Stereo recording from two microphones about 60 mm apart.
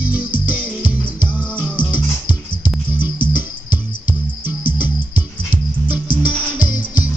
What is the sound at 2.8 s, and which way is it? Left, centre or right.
Music, right.